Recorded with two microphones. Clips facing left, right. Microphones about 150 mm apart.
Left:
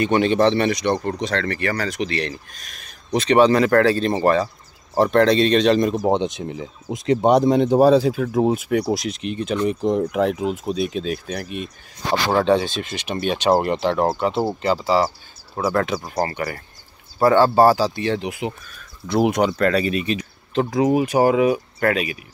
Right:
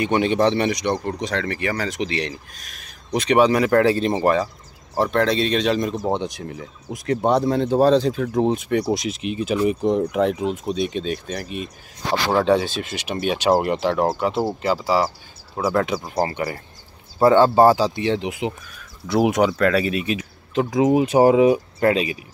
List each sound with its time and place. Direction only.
0.0 s speech: 15° right (ahead or behind)
2.5 s speech: 5° right (ahead or behind)
6.0 s speech: 20° left (ahead or behind); by 16.3 s 10° right (ahead or behind)
16.3 s speech: 20° right (ahead or behind)
19.0 s speech: 5° right (ahead or behind)
20.7 s speech: 20° right (ahead or behind)